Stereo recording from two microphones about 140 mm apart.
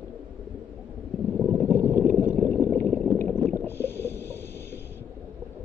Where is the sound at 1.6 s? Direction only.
10° left (ahead or behind).